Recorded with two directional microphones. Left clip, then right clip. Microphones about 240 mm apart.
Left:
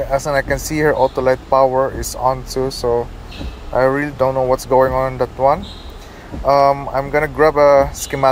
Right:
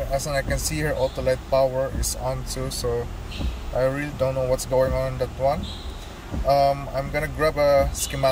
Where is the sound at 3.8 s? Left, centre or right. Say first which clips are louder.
Left 8 dB; left.